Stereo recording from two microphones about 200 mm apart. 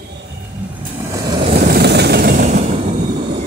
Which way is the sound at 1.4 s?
40° right (ahead or behind).